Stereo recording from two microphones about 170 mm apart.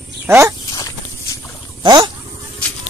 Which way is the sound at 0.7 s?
20° left (ahead or behind).